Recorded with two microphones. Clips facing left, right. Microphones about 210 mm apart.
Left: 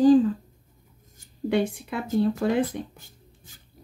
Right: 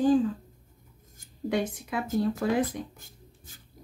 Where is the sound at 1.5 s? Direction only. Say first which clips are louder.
Left 4 dB; 30° left (ahead or behind).